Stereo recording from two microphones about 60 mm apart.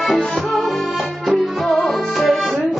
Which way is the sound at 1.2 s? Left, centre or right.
Centre.